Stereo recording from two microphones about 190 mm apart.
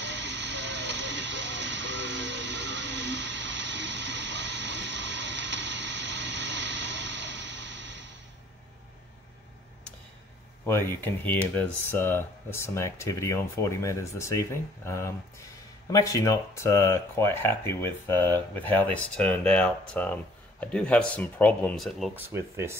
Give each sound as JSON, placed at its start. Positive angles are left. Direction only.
{"t": 0.0, "sound": "vehicle", "side_deg": -70}
{"t": 10.9, "sound": "speech", "side_deg": 10}
{"t": 22.1, "sound": "speech", "side_deg": -15}